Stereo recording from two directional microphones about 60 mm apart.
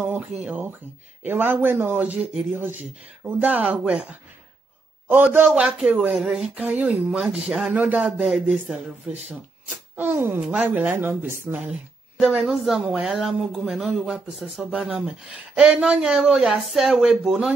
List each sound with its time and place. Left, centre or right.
0.1 s speech: right
1.2 s speech: right
2.5 s speech: right; by 4.1 s centre
5.0 s a man's voice: right
5.4 s speech: centre
6.1 s speech: centre
6.5 s speech: right
6.9 s speech: centre
7.7 s speech: right
8.0 s speech: centre
9.9 s speech: right
10.4 s speech: right
12.4 s speech: centre